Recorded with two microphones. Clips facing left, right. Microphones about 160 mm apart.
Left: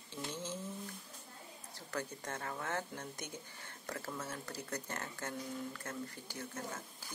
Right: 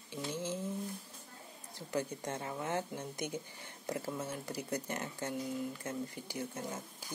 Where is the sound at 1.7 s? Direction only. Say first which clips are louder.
Right 5 dB; 15° right (ahead or behind).